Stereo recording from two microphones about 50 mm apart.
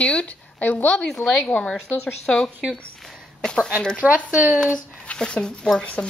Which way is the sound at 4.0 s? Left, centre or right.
Right.